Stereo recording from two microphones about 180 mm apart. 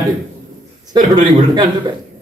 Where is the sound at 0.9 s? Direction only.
20° right (ahead or behind).